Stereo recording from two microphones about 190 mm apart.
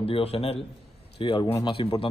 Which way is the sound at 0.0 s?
30° left (ahead or behind).